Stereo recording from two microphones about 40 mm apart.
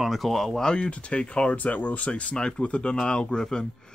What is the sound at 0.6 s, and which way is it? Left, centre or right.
Speech, left.